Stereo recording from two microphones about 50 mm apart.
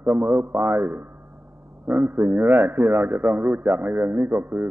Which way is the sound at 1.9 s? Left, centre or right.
Right.